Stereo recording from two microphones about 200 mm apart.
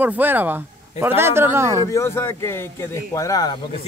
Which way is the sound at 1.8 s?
15° left (ahead or behind).